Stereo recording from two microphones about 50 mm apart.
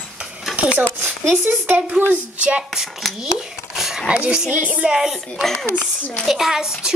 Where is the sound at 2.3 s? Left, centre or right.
Right.